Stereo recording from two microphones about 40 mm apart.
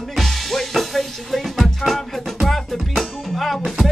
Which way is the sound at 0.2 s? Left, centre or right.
Centre.